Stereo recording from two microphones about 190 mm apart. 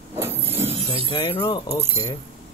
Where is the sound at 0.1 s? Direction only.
10° right (ahead or behind).